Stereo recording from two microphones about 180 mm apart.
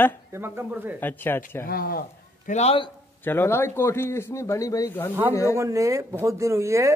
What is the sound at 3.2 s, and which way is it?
Speech, 10° left (ahead or behind).